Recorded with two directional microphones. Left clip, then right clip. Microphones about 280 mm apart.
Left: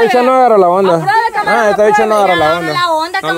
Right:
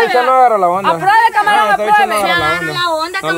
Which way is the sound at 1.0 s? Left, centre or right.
Centre.